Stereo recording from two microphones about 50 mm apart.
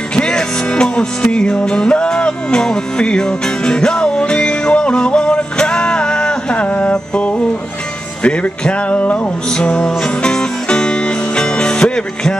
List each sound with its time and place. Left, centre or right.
0.1 s music: centre